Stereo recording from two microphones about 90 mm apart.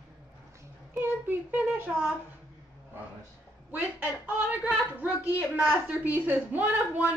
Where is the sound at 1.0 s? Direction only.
20° right (ahead or behind).